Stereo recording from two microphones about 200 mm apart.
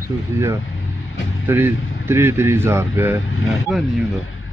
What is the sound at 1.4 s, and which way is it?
Speech, 10° right (ahead or behind).